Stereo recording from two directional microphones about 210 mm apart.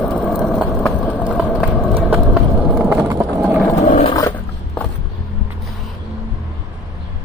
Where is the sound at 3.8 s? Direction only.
30° left (ahead or behind).